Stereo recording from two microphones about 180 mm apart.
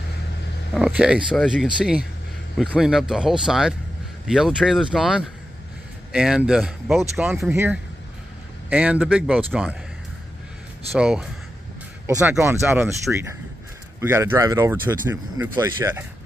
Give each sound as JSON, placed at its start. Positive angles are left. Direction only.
{"t": 0.7, "sound": "speech", "side_deg": -5}
{"t": 10.9, "sound": "speech", "side_deg": -5}
{"t": 12.1, "sound": "speech", "side_deg": -15}